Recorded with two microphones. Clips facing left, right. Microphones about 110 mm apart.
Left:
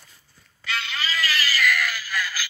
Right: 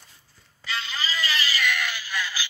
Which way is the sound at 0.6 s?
30° right (ahead or behind).